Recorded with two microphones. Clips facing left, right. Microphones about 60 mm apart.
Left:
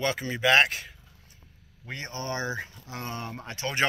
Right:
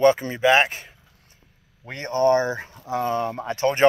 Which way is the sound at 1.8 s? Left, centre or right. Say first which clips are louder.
Right 15 dB; right.